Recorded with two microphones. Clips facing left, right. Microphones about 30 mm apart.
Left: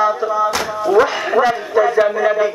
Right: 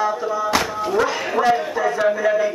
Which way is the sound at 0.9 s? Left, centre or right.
Centre.